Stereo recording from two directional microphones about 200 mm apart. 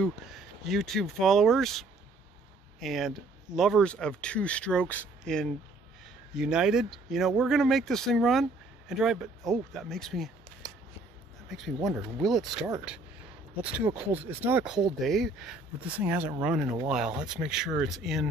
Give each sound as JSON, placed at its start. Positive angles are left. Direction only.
{"t": 0.0, "sound": "speech", "side_deg": 0}